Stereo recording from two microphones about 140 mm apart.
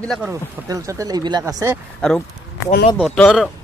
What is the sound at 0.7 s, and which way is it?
Speech, 25° right (ahead or behind).